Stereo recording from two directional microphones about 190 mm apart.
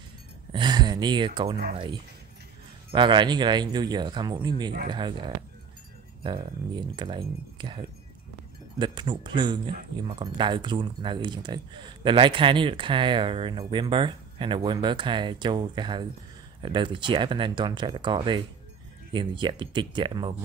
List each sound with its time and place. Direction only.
0.5 s speech: 25° right (ahead or behind)